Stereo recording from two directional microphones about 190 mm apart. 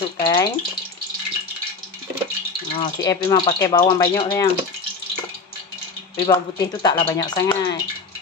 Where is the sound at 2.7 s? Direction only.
20° left (ahead or behind).